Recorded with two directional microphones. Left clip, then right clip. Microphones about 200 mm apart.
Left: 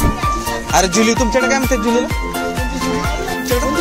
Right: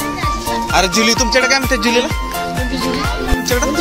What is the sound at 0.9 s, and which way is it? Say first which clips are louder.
Speech: right 1 dB; 5° left (ahead or behind).